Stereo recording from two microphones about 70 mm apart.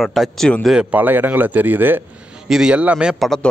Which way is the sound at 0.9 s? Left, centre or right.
Right.